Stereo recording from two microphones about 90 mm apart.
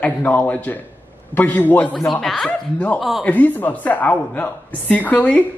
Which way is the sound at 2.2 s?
Centre (ahead or behind).